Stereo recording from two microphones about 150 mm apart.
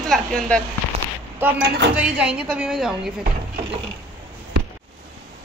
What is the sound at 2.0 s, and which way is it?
A woman's voice, 5° right (ahead or behind).